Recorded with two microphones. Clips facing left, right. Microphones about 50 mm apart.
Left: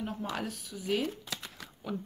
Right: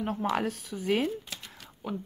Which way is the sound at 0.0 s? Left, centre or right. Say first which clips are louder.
Right 7 dB; right.